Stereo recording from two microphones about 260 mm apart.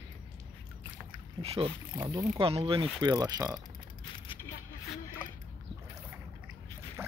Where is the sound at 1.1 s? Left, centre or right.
Right.